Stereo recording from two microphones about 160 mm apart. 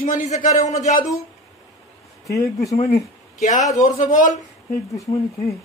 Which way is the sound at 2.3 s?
20° left (ahead or behind).